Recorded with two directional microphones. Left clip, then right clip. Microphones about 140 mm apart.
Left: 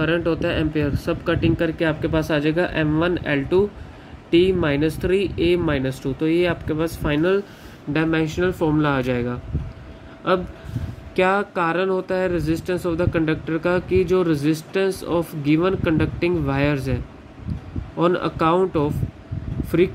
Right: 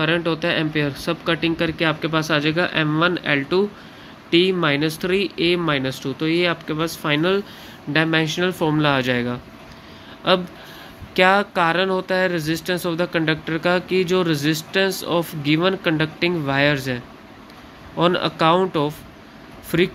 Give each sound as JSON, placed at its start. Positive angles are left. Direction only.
{"t": 0.0, "sound": "speech", "side_deg": 5}